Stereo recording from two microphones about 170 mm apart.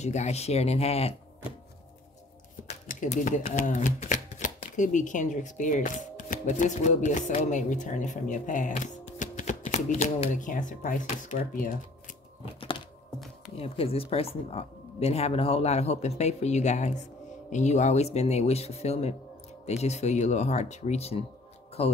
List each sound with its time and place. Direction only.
0.0 s speech: 40° left (ahead or behind)
2.7 s speech: 45° left (ahead or behind)
12.5 s a sound: 30° left (ahead or behind)
13.6 s speech: 35° left (ahead or behind)